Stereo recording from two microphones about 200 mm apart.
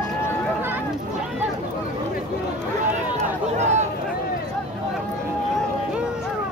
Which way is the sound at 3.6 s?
35° right (ahead or behind).